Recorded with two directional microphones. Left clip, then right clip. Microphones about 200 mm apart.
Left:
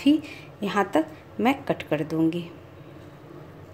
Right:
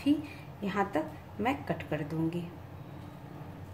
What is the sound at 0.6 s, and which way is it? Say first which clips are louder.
A woman's voice: left 8 dB; 50° left (ahead or behind).